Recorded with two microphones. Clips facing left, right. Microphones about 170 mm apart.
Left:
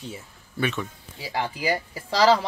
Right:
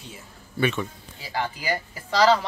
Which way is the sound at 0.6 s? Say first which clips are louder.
Right 3 dB; centre (ahead or behind).